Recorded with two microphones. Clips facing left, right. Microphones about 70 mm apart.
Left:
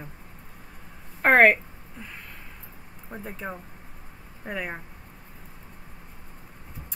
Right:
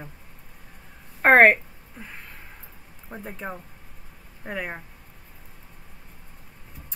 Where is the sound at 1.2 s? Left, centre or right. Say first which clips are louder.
Right 2 dB; right.